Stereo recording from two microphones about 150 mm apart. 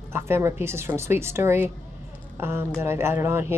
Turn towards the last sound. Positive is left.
turn(degrees=-15)  # may be behind; listen again after turning